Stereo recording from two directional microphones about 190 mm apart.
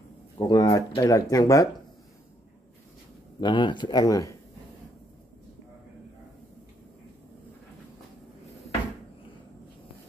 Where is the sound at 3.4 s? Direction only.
25° left (ahead or behind).